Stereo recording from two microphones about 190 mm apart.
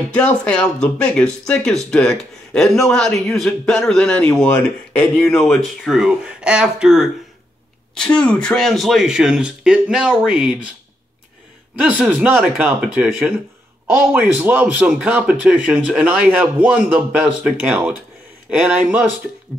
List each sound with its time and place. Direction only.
0.1 s speech: 5° left (ahead or behind)
11.7 s a man's voice: 5° right (ahead or behind)